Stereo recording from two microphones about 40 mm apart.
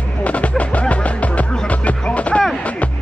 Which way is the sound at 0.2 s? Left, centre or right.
Left.